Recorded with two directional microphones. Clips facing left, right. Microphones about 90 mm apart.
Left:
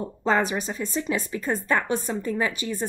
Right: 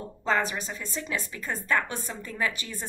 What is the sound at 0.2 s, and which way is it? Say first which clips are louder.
Speech: left 4 dB; 20° left (ahead or behind).